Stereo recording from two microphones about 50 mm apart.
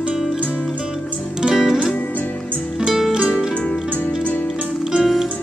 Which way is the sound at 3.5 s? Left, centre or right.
Left.